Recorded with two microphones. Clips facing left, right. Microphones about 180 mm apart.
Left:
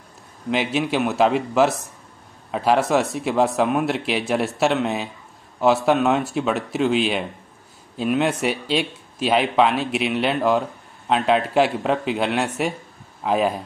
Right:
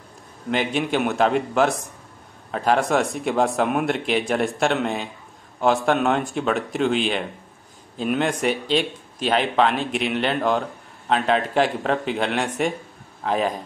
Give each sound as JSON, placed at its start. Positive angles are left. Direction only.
{"t": 0.5, "sound": "speech", "side_deg": 5}